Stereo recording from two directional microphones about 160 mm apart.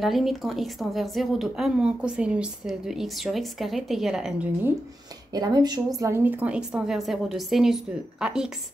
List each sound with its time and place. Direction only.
0.0 s a woman's voice: centre (ahead or behind)
5.3 s a woman's voice: 25° right (ahead or behind); by 8.5 s 5° right (ahead or behind)